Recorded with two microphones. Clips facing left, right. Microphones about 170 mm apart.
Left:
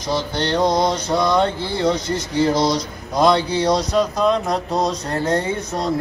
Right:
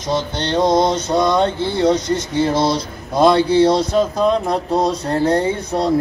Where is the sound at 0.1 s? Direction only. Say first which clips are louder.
Right 1 dB; 20° right (ahead or behind).